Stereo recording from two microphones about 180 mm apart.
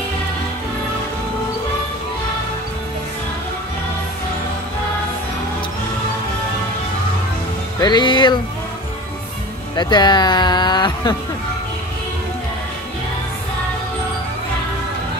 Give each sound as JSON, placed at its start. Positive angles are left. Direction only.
{"t": 7.8, "sound": "speech", "side_deg": 25}
{"t": 9.8, "sound": "speech", "side_deg": 25}